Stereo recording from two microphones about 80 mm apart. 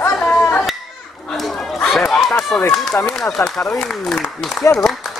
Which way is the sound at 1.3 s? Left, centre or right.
Centre.